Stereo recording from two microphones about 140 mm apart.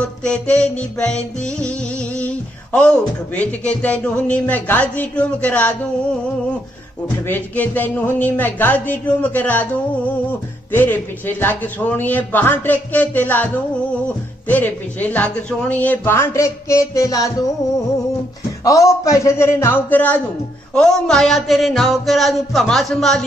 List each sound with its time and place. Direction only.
0.0 s speech: 10° left (ahead or behind)
7.2 s a man's voice: 15° left (ahead or behind)
20.7 s music: 5° left (ahead or behind)